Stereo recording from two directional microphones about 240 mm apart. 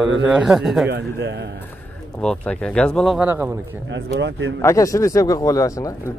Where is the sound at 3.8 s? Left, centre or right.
Right.